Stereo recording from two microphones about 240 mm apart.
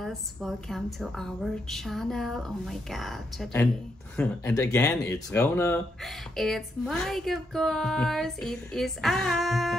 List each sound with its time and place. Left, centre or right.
0.0 s speech: centre